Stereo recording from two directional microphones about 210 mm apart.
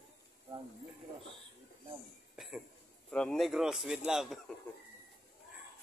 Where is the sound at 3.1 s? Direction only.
5° left (ahead or behind).